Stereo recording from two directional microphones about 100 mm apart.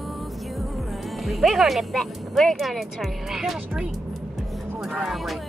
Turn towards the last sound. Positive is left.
turn(degrees=0)  # may be behind; listen again after turning